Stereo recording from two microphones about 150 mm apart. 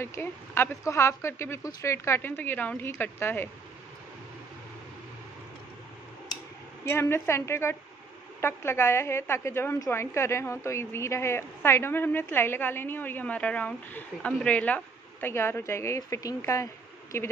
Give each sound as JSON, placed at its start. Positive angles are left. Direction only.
{"t": 0.0, "sound": "a woman's voice", "side_deg": 15}
{"t": 6.8, "sound": "a woman's voice", "side_deg": 15}